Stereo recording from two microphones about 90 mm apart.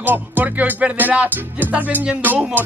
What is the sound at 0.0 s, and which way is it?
Speech, 20° right (ahead or behind).